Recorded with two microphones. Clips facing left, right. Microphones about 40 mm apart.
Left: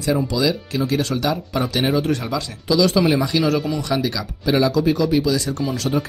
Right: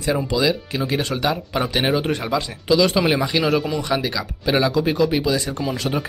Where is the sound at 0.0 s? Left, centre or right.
Right.